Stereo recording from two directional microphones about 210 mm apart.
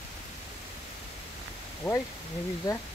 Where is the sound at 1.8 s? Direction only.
5° left (ahead or behind).